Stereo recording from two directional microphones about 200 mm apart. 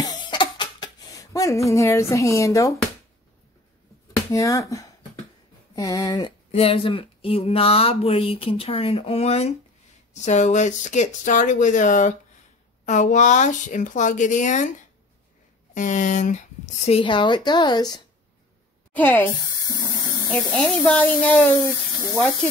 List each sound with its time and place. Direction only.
0.0 s a sound: 20° left (ahead or behind)
4.3 s speech: 15° left (ahead or behind)
6.5 s speech: 30° left (ahead or behind)
15.7 s speech: 40° left (ahead or behind); by 18.0 s 20° left (ahead or behind)
18.9 s speech: 10° left (ahead or behind)
20.5 s speech: 5° left (ahead or behind)